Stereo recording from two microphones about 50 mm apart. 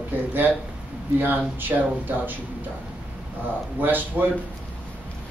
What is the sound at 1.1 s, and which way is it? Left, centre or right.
A man's voice, right.